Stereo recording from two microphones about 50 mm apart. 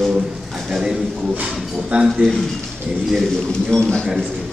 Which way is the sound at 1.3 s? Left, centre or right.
Right.